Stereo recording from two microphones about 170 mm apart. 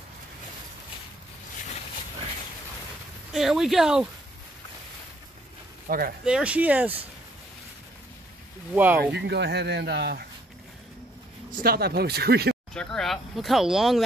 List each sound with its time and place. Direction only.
3.3 s speech: centre (ahead or behind)
5.9 s speech: 60° right (ahead or behind)
6.2 s speech: 5° right (ahead or behind)
8.7 s speech: 10° right (ahead or behind)
9.1 s speech: 85° right
11.6 s speech: 65° right (ahead or behind)
12.7 s speech: 5° left (ahead or behind)